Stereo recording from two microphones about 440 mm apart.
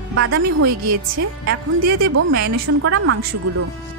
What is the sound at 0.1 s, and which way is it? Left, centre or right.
A woman's voice, right.